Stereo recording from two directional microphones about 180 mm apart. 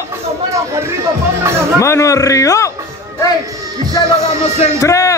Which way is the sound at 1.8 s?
15° left (ahead or behind).